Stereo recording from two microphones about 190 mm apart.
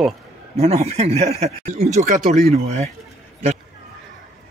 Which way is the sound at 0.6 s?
35° right (ahead or behind).